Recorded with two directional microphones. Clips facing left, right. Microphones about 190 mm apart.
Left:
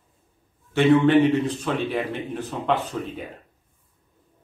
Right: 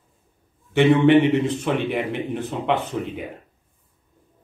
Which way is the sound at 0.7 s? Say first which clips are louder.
Right 2 dB; 20° right (ahead or behind).